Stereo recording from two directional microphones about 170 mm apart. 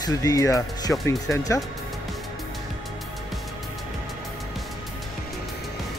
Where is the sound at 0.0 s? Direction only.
20° left (ahead or behind).